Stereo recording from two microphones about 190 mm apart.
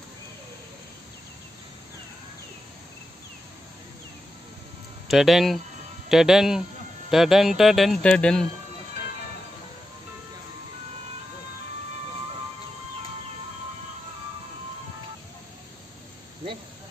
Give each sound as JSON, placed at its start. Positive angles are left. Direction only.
{"t": 5.0, "sound": "speech", "side_deg": 0}